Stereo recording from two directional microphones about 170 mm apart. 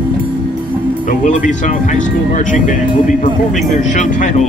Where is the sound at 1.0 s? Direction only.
50° left (ahead or behind).